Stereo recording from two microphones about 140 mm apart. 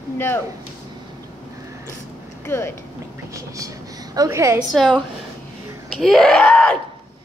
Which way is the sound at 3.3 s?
25° right (ahead or behind).